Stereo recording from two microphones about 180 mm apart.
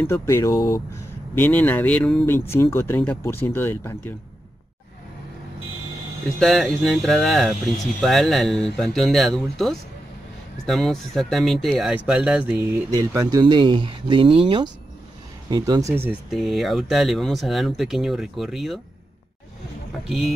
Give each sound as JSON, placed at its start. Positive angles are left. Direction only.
{"t": 0.0, "sound": "speech", "side_deg": 15}
{"t": 6.2, "sound": "speech", "side_deg": 0}
{"t": 12.9, "sound": "speech", "side_deg": -20}
{"t": 16.3, "sound": "speech", "side_deg": 0}
{"t": 20.1, "sound": "speech", "side_deg": 0}